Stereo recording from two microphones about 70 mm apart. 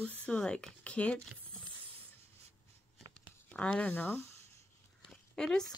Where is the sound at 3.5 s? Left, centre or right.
Centre.